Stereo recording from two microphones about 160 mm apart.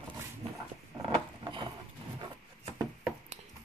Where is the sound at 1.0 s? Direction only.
30° right (ahead or behind).